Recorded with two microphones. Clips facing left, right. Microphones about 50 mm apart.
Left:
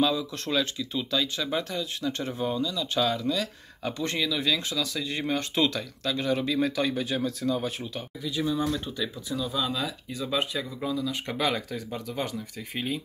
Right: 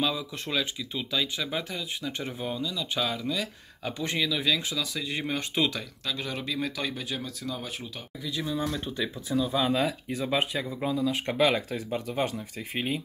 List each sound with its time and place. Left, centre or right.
0.0 s speech: centre
8.7 s speech: right
9.6 s speech: right
11.1 s speech: centre